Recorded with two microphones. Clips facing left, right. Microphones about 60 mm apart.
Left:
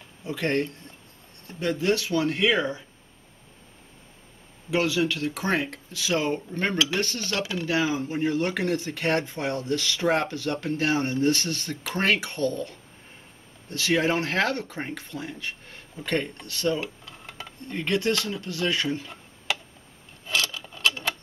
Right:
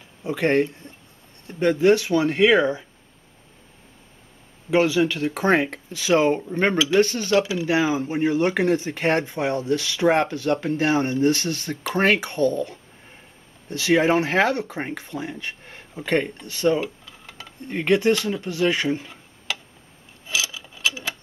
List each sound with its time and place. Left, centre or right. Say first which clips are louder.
0.2 s speech: right 6 dB; right
4.7 s speech: right 5 dB; centre
16.8 s a sound: right 4 dB; centre
17.6 s speech: right 6 dB; right
19.0 s tick-tock: left 1 dB; centre
20.2 s mechanisms: even; centre